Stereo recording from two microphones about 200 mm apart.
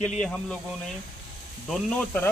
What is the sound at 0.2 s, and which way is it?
Speech, 5° left (ahead or behind).